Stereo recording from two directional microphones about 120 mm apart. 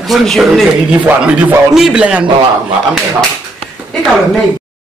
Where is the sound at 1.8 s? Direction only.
5° right (ahead or behind).